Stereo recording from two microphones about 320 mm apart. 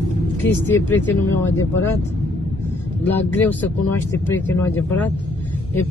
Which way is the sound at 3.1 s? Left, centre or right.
Centre.